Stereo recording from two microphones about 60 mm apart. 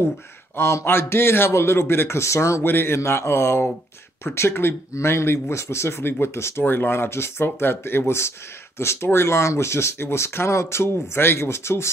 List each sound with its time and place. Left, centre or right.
0.6 s speech: left
2.6 s speech: left
3.0 s speech: left
6.6 s speech: left